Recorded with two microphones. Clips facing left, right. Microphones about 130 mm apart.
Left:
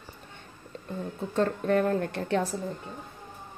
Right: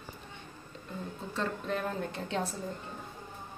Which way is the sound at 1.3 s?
55° left (ahead or behind).